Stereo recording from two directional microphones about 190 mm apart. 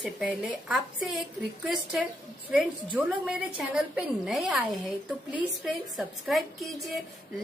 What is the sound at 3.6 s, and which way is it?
A woman's voice, 5° right (ahead or behind).